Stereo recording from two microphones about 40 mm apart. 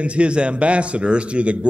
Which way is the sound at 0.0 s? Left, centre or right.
Right.